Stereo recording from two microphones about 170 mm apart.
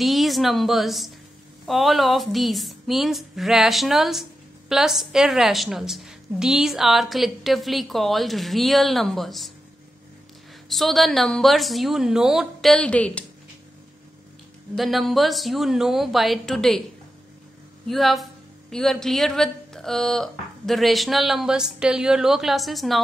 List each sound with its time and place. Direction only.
0.0 s a woman's voice: centre (ahead or behind)
10.7 s a woman's voice: centre (ahead or behind)
14.8 s a woman's voice: centre (ahead or behind)
17.8 s a woman's voice: centre (ahead or behind)